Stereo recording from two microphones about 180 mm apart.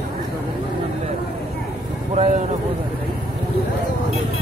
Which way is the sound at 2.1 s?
40° right (ahead or behind).